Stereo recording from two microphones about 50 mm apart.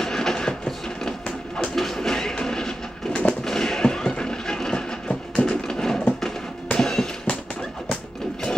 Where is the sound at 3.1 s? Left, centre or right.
Left.